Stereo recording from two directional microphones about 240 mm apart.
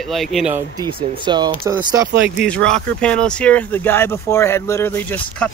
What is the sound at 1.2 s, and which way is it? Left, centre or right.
Speech, centre.